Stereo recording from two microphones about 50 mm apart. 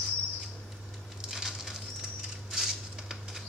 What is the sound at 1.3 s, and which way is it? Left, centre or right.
Patter, centre.